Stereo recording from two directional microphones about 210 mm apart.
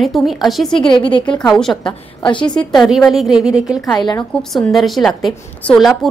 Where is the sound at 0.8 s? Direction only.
25° left (ahead or behind).